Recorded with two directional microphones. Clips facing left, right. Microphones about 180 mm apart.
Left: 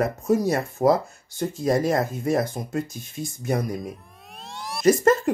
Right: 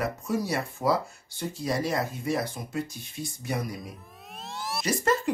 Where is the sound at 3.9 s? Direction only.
Centre (ahead or behind).